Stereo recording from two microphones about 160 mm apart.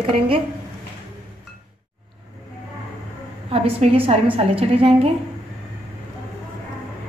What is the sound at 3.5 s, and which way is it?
A woman's voice, 35° right (ahead or behind).